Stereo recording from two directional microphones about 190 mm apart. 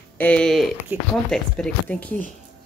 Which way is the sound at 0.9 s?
10° right (ahead or behind).